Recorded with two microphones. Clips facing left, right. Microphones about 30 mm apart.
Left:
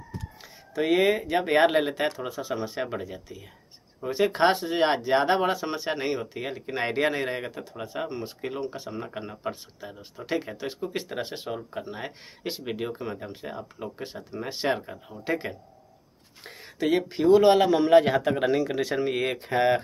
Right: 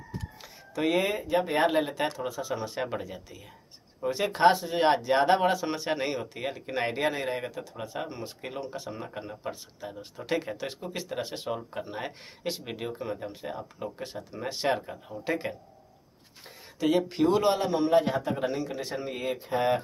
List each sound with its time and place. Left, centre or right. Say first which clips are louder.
0.4 s computer keyboard: left 2 dB; centre
1.0 s speech: left 4 dB; left
1.4 s speech: left 5 dB; left
1.9 s speech: left 2 dB; left; by 4.2 s centre
4.5 s speech: right 1 dB; left
4.8 s speech: even; centre
9.8 s speech: even; centre
10.9 s speech: left 2 dB; centre
11.4 s speech: even; centre
17.1 s speech: left 5 dB; centre
17.6 s a man's voice: left 6 dB; left
19.3 s speech: left 3 dB; left